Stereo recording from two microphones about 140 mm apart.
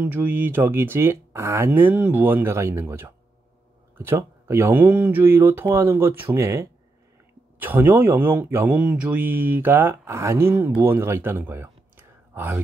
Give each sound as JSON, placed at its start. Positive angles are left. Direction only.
{"t": 0.0, "sound": "speech", "side_deg": -15}